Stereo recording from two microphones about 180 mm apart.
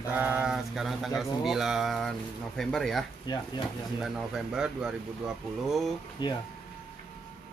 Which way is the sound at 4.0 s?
5° right (ahead or behind).